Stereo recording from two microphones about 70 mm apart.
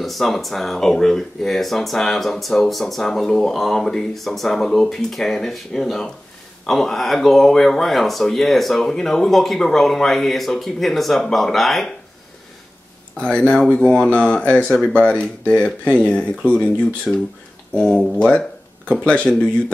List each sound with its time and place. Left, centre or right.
0.0 s speech: centre
13.2 s speech: centre
14.7 s speech: centre
15.0 s speech: centre
17.1 s speech: centre
17.7 s speech: centre